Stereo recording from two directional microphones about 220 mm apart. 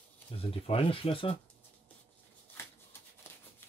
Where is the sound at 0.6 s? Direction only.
25° left (ahead or behind).